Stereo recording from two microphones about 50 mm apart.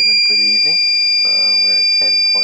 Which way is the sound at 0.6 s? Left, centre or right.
Centre.